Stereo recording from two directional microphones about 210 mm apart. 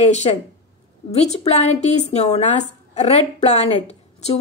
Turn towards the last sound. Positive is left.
turn(degrees=30)  # may be behind; listen again after turning